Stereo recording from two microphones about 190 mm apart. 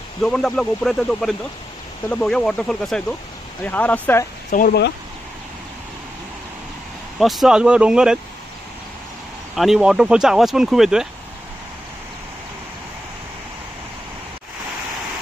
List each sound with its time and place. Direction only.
0.2 s speech: centre (ahead or behind)
4.5 s speech: 45° left (ahead or behind)
7.2 s speech: centre (ahead or behind)
9.6 s speech: centre (ahead or behind)